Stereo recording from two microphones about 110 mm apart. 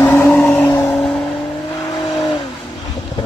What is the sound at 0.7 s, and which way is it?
Vehicle, 25° left (ahead or behind).